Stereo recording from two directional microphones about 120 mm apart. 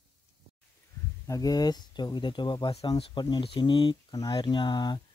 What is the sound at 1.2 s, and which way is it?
Speech, 30° left (ahead or behind).